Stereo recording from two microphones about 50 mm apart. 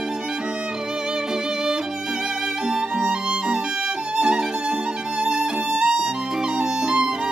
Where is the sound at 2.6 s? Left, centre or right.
Centre.